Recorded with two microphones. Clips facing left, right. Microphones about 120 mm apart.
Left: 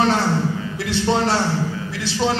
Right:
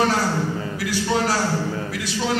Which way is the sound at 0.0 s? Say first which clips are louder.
Left 2 dB; 25° left (ahead or behind).